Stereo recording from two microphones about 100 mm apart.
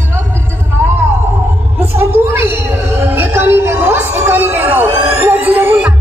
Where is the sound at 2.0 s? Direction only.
20° right (ahead or behind).